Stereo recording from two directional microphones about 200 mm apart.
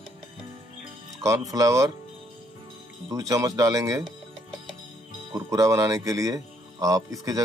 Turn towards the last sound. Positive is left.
turn(degrees=-15)  # may be behind; listen again after turning